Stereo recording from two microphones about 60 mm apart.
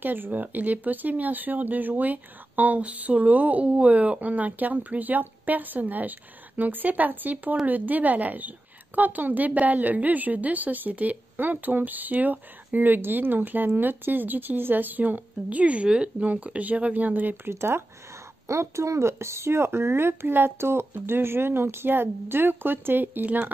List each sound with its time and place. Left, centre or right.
0.0 s speech: right
17.5 s speech: right
18.5 s speech: right